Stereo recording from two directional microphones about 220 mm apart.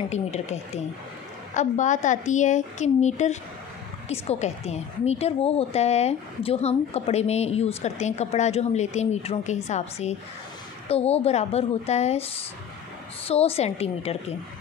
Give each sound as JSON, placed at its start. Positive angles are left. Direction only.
{"t": 0.1, "sound": "a woman's voice", "side_deg": 30}
{"t": 13.3, "sound": "a woman's voice", "side_deg": 25}